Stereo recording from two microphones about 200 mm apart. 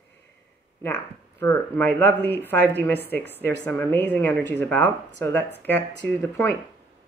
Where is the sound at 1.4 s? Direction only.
10° left (ahead or behind).